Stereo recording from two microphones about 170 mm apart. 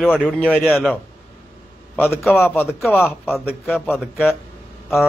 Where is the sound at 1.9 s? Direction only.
10° left (ahead or behind).